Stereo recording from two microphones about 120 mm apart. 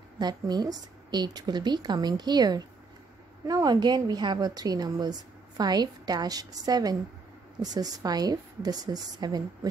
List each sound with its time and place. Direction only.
0.2 s a woman's voice: 35° right (ahead or behind)